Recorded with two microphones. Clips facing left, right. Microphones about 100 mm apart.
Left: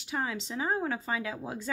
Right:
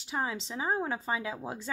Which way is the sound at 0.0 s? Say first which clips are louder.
Even; 25° right (ahead or behind).